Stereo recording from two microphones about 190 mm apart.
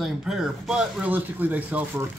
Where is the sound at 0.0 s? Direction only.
5° right (ahead or behind).